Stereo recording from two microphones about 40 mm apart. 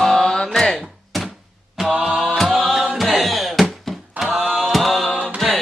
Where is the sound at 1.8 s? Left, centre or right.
Centre.